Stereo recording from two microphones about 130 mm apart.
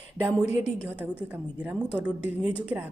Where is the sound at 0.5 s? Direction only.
55° left (ahead or behind).